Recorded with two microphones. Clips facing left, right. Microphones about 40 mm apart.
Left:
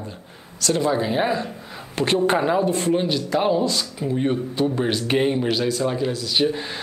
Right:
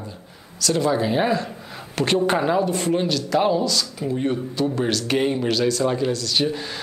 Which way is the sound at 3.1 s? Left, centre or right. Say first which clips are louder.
Right 1 dB; left.